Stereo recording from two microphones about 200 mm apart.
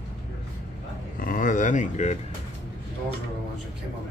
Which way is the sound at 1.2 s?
40° left (ahead or behind).